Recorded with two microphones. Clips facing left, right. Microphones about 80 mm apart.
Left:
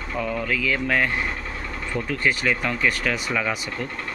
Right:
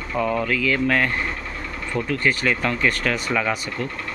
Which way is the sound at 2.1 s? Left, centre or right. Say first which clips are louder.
Right 1 dB; centre.